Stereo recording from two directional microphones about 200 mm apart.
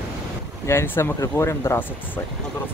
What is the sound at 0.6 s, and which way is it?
Speech, 10° left (ahead or behind).